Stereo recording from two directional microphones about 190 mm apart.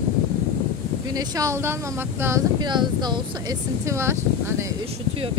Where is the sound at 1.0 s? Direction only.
20° right (ahead or behind).